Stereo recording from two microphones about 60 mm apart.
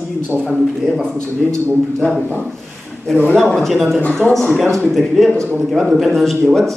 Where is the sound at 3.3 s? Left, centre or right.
Centre.